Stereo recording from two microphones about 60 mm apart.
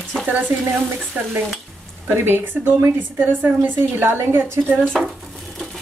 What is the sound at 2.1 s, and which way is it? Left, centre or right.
Speech, right.